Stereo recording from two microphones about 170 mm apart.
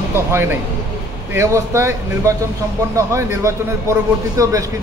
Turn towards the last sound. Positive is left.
turn(degrees=-20)  # may be behind; listen again after turning